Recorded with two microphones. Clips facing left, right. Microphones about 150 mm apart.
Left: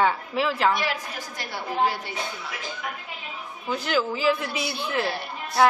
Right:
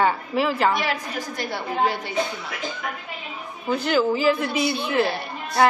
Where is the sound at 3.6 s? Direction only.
Centre (ahead or behind).